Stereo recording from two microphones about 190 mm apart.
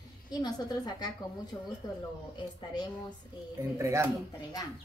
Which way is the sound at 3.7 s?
15° right (ahead or behind).